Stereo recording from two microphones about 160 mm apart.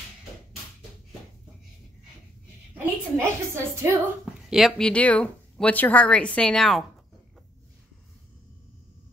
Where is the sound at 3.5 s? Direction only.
20° right (ahead or behind).